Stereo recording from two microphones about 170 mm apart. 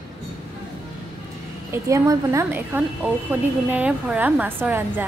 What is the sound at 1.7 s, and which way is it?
A woman's voice, 15° right (ahead or behind).